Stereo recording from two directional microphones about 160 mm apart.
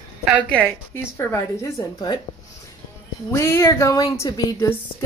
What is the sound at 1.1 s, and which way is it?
Speech, 15° left (ahead or behind).